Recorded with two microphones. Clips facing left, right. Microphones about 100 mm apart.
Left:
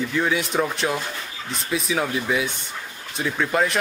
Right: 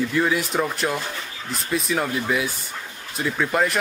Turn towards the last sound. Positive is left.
turn(degrees=0)  # may be behind; listen again after turning